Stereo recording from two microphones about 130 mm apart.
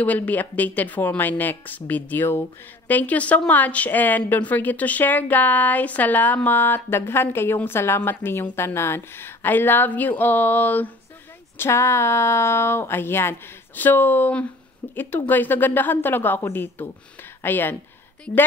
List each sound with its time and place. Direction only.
0.0 s a woman's voice: 10° left (ahead or behind)